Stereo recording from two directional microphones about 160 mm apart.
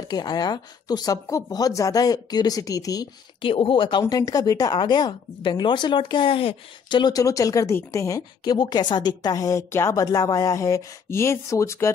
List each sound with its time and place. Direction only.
0.1 s speech: 25° left (ahead or behind)
3.5 s speech: 35° left (ahead or behind); by 11.9 s 20° left (ahead or behind)